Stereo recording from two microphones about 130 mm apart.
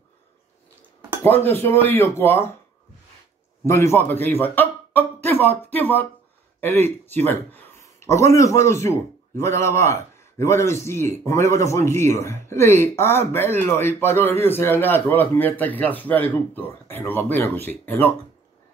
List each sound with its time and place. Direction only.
1.2 s a man's voice: 15° left (ahead or behind)
3.6 s a man's voice: 20° left (ahead or behind)